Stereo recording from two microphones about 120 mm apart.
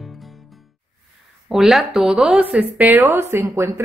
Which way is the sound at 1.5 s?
Centre (ahead or behind).